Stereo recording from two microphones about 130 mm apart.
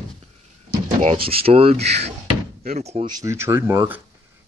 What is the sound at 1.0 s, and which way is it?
Speech, 50° right (ahead or behind).